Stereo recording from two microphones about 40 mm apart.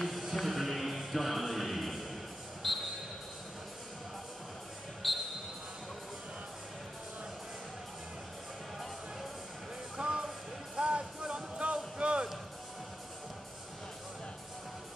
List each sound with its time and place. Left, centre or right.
0.1 s music: centre
2.6 s a sound: centre
5.0 s basketball bounce: centre
9.9 s music: right